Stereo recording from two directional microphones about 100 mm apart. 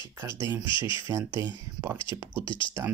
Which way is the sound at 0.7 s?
55° left (ahead or behind).